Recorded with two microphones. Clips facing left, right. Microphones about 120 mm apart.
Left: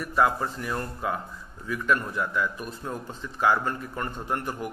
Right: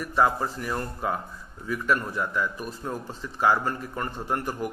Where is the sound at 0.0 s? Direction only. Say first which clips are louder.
Even; centre (ahead or behind).